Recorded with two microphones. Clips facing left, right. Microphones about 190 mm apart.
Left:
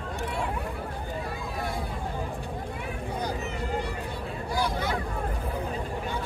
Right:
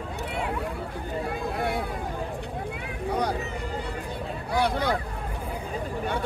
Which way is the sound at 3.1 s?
70° right (ahead or behind).